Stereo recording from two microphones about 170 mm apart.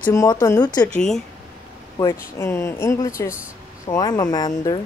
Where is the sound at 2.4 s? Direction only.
15° left (ahead or behind).